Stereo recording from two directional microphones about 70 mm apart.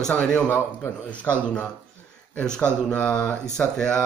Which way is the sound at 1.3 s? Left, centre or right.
Centre.